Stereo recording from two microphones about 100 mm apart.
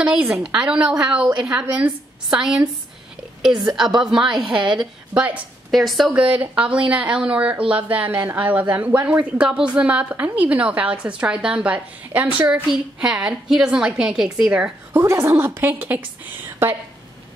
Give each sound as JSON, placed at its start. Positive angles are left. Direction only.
{"t": 0.0, "sound": "a woman's voice", "side_deg": -10}
{"t": 5.7, "sound": "a woman's voice", "side_deg": 0}
{"t": 6.1, "sound": "speech", "side_deg": -15}
{"t": 14.9, "sound": "a woman's voice", "side_deg": -30}